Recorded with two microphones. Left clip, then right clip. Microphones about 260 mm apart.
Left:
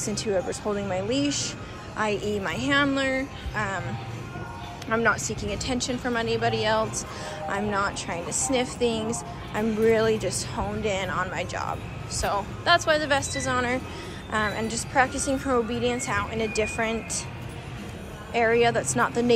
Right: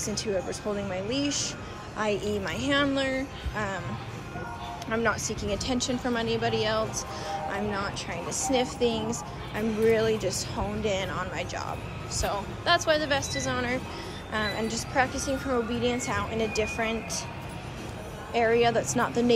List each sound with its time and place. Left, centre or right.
0.0 s a woman's voice: centre
4.8 s a woman's voice: centre
18.3 s a woman's voice: centre